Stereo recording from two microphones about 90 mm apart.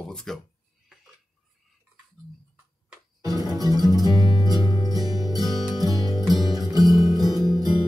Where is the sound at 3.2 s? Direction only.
45° right (ahead or behind).